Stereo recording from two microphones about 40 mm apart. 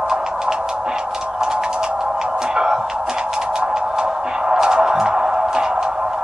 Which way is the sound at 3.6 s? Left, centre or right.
Centre.